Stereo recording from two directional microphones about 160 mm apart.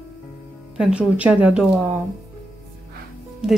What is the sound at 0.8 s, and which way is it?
Speech, 5° right (ahead or behind).